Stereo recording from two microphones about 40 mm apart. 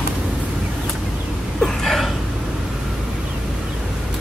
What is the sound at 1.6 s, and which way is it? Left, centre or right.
Gasp, centre.